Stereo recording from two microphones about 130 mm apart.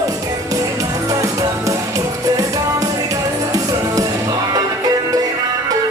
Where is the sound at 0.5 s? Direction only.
25° right (ahead or behind).